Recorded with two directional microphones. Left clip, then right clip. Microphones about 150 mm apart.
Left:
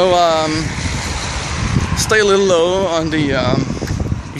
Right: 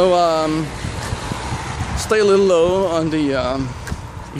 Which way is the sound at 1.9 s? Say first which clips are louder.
Left 2 dB; 10° right (ahead or behind).